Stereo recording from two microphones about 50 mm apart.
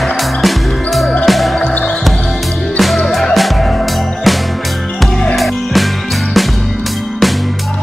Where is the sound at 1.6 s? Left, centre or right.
Left.